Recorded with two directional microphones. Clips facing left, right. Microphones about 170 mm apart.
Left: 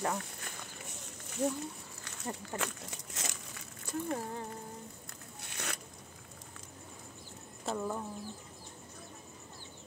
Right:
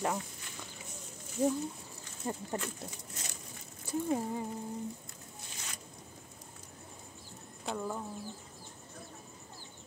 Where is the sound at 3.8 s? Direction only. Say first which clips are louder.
Right 4 dB; 10° right (ahead or behind).